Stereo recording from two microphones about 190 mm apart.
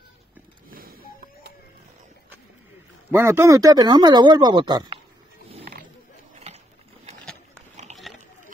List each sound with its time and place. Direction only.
0.7 s printer: 50° right (ahead or behind)
3.1 s speech: 15° right (ahead or behind)
7.7 s a sound: 35° right (ahead or behind)